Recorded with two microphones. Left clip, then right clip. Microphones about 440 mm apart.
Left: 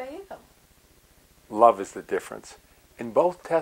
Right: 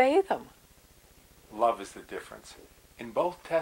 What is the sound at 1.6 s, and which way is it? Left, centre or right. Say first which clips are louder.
Speech: left 9 dB; left.